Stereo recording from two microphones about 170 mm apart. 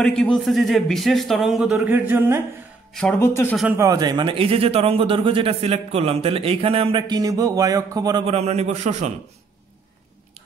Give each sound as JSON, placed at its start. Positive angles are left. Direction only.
{"t": 0.0, "sound": "a man's voice", "side_deg": 5}
{"t": 2.0, "sound": "speech", "side_deg": -15}
{"t": 2.9, "sound": "speech", "side_deg": 5}
{"t": 3.2, "sound": "speech", "side_deg": 15}
{"t": 3.7, "sound": "a man's voice", "side_deg": -20}
{"t": 8.3, "sound": "a man's voice", "side_deg": -40}